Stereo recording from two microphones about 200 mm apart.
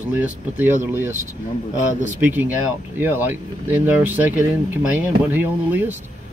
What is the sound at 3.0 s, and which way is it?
Speech, 10° right (ahead or behind).